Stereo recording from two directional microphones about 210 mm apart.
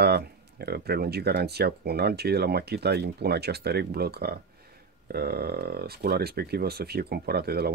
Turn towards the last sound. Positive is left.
turn(degrees=-50)  # may be behind; listen again after turning